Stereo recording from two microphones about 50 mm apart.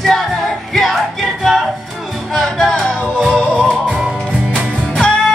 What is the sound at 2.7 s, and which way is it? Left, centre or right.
Music, centre.